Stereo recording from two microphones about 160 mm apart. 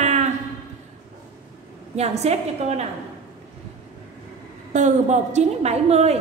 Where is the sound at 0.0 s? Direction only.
45° right (ahead or behind).